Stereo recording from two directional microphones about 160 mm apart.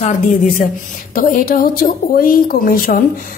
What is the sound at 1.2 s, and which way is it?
A woman's voice, 60° left (ahead or behind).